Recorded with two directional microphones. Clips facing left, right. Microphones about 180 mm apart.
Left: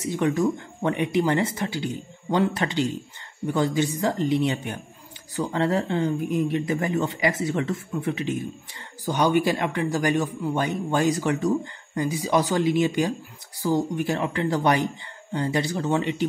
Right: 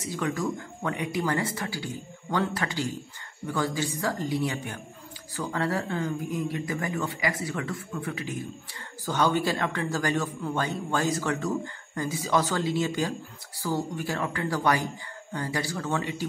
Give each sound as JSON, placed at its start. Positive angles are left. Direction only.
{"t": 0.1, "sound": "speech", "side_deg": 20}